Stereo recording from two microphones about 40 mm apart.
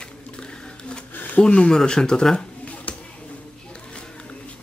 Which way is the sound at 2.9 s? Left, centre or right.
Left.